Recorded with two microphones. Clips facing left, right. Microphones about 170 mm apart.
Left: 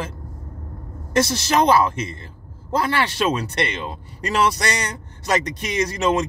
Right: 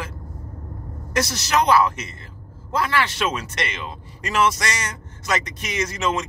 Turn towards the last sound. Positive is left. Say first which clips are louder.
# left 4 dB
turn(degrees=35)  # may be behind; listen again after turning